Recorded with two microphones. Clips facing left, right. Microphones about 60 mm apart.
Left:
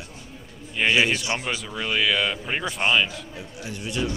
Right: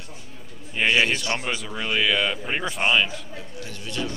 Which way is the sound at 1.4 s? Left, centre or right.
Centre.